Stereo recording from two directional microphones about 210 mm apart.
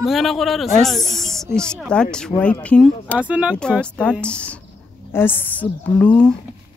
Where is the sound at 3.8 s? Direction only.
5° left (ahead or behind).